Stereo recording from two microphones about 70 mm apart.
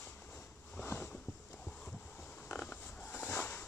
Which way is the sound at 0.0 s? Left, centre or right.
Centre.